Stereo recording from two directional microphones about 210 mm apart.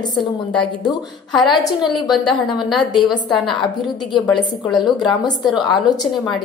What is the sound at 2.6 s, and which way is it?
Speech, centre (ahead or behind).